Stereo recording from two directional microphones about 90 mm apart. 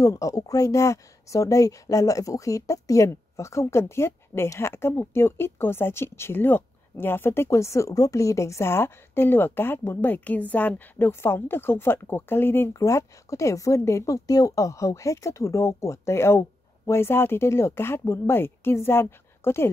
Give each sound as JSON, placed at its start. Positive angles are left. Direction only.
{"t": 0.0, "sound": "speech", "side_deg": 40}